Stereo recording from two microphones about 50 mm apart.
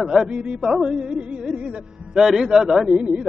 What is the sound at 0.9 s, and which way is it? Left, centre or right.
Music, centre.